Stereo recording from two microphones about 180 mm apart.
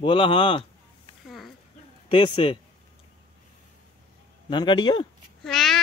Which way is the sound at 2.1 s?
30° left (ahead or behind).